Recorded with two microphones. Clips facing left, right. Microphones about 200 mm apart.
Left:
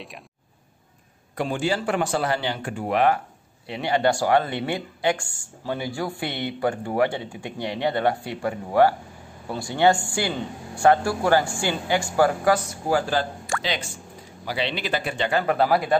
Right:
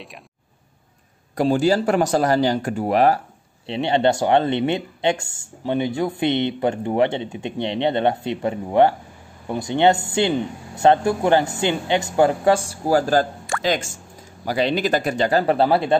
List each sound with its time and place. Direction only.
1.3 s speech: 40° right (ahead or behind)
3.6 s speech: 25° right (ahead or behind)